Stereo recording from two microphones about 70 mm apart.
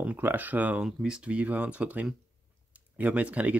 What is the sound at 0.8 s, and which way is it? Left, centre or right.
Speech, centre.